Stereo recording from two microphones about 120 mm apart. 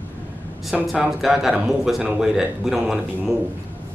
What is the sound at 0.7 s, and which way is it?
Speech, 5° right (ahead or behind).